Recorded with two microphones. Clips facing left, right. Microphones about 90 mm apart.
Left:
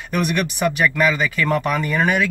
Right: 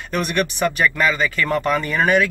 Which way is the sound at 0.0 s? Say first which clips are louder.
Even; 15° left (ahead or behind).